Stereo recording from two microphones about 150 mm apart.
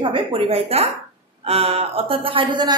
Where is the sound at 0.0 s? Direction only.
35° right (ahead or behind).